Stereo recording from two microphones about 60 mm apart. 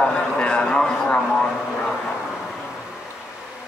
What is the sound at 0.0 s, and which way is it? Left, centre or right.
Vehicle, centre.